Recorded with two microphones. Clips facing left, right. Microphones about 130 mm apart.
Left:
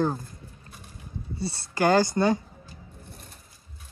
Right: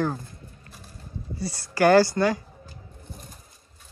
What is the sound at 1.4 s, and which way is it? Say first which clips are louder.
Speech: right 3 dB; 25° left (ahead or behind).